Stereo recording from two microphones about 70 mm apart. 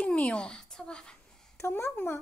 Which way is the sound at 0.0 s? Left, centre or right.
Centre.